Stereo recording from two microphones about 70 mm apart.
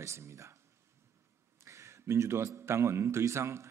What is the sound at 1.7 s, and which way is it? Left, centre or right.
A man's voice, right.